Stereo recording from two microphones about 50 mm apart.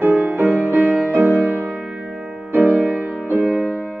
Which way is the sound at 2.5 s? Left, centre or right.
Right.